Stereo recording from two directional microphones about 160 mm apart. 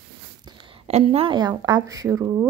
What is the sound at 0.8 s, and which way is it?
Speech, 40° right (ahead or behind).